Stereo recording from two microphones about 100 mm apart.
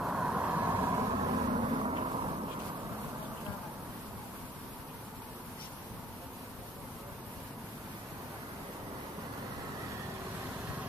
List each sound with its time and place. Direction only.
0.0 s vehicle: 10° right (ahead or behind)
1.1 s vehicle: 60° right (ahead or behind)